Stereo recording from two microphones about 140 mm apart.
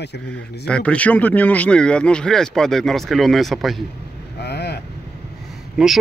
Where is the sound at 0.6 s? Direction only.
10° left (ahead or behind).